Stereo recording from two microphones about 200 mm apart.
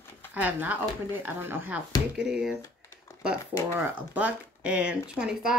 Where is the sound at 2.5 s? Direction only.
15° left (ahead or behind).